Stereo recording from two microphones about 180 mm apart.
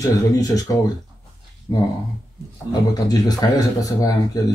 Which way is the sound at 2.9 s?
20° left (ahead or behind).